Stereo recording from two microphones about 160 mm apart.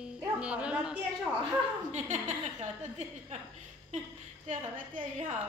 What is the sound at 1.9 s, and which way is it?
A woman's voice, 45° right (ahead or behind).